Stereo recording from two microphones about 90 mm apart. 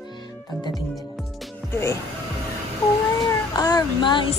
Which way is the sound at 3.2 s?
45° left (ahead or behind).